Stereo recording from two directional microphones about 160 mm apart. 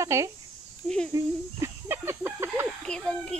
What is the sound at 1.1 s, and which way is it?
Chicken, 15° right (ahead or behind).